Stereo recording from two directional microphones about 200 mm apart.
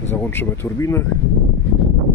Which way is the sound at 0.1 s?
10° left (ahead or behind).